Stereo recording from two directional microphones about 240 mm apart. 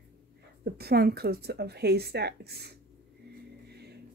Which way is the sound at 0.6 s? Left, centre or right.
Right.